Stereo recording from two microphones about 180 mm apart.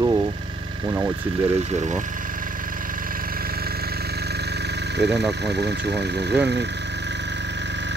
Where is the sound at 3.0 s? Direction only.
55° right (ahead or behind).